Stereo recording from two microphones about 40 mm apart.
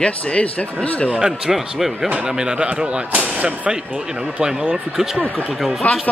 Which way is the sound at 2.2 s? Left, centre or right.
Centre.